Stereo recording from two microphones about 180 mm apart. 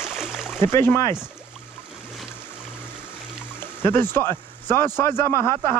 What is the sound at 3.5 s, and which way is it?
Speech, 10° left (ahead or behind).